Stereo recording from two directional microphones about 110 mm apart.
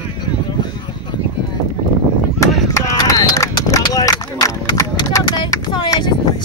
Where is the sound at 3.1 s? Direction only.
30° left (ahead or behind).